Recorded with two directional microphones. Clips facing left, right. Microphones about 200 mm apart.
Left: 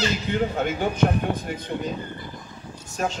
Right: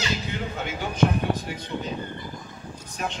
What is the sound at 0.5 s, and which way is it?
Speech, 55° left (ahead or behind).